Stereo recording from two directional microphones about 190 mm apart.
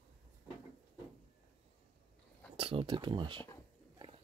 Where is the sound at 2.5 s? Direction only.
25° right (ahead or behind).